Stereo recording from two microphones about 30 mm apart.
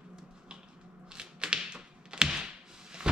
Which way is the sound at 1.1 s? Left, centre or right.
Right.